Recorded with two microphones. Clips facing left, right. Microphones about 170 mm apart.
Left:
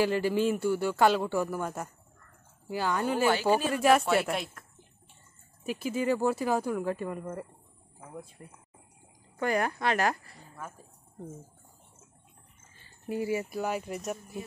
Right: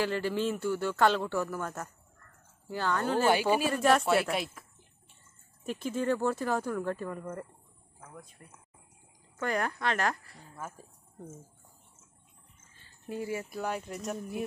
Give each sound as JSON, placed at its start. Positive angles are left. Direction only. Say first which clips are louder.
{"t": 0.0, "sound": "speech", "louder": "left 4 dB", "side_deg": 15}
{"t": 8.1, "sound": "speech", "louder": "left 7 dB", "side_deg": 20}
{"t": 13.1, "sound": "speech", "louder": "left 4 dB", "side_deg": 10}